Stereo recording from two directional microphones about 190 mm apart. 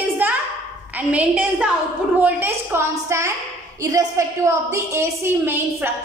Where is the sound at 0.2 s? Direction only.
10° right (ahead or behind).